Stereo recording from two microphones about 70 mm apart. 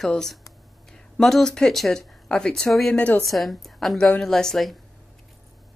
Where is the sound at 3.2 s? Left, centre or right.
Centre.